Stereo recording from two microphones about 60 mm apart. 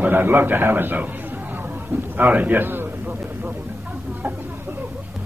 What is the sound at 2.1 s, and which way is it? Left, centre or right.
Speech, right.